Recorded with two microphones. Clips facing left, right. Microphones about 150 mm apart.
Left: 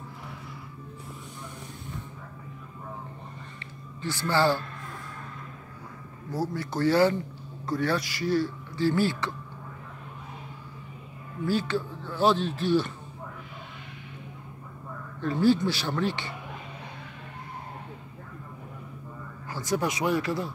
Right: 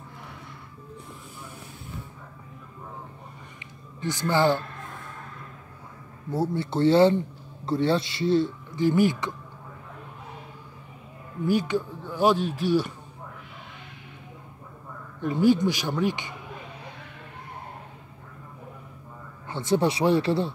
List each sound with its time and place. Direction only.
4.0 s speech: 20° right (ahead or behind)
6.3 s speech: 25° right (ahead or behind)
11.4 s speech: 15° right (ahead or behind)
15.1 s speech: 15° right (ahead or behind)
19.5 s speech: 25° right (ahead or behind)